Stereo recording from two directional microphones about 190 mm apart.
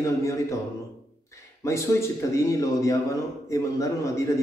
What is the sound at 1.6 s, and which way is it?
A man's voice, 15° left (ahead or behind).